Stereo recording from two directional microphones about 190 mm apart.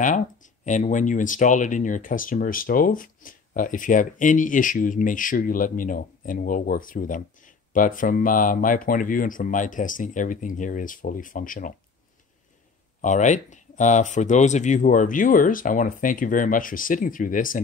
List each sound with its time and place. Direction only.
0.0 s speech: 40° left (ahead or behind)
13.0 s speech: 40° left (ahead or behind)